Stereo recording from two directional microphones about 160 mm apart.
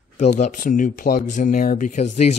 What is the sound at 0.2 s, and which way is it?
Speech, 50° left (ahead or behind).